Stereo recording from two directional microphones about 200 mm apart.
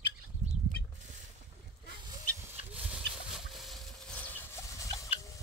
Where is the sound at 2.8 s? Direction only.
5° right (ahead or behind).